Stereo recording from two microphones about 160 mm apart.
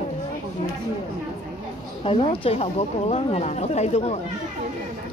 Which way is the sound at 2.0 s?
35° left (ahead or behind).